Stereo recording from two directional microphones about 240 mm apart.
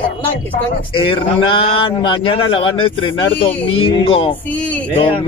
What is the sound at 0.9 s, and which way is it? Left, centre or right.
A man's voice, left.